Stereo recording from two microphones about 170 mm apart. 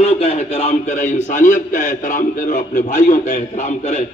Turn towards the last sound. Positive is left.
turn(degrees=50)  # may be behind; listen again after turning